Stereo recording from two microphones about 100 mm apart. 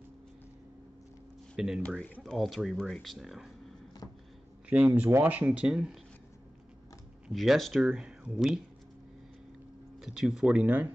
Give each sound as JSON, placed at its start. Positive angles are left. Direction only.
{"t": 1.8, "sound": "speech", "side_deg": 10}
{"t": 2.2, "sound": "speech", "side_deg": 0}
{"t": 4.0, "sound": "a sound", "side_deg": 35}
{"t": 4.6, "sound": "speech", "side_deg": -15}
{"t": 7.2, "sound": "speech", "side_deg": 0}
{"t": 9.9, "sound": "speech", "side_deg": 0}